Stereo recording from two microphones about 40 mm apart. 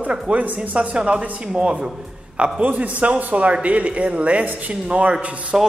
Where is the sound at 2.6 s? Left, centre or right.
Right.